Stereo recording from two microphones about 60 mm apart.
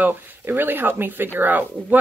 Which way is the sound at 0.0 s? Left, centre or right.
Right.